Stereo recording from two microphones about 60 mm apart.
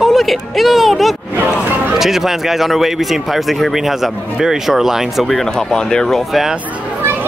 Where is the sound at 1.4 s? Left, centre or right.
Right.